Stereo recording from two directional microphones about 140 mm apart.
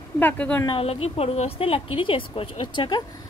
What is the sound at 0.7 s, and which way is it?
A woman's voice, 45° left (ahead or behind).